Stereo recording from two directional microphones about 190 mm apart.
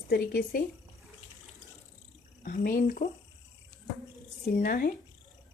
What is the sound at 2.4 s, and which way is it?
Speech, 50° left (ahead or behind).